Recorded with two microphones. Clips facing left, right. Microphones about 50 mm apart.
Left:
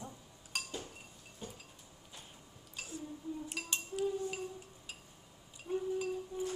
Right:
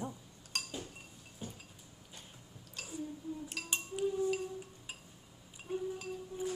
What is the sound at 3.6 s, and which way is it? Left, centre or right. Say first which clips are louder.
Cutlery: left 1 dB; centre.